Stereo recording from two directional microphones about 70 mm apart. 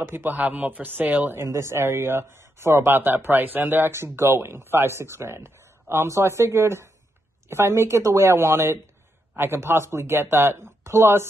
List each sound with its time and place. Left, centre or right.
0.0 s speech: right
1.5 s speech: right